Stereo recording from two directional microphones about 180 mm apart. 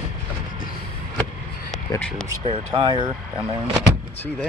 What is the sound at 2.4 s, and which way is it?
Speech, 30° right (ahead or behind).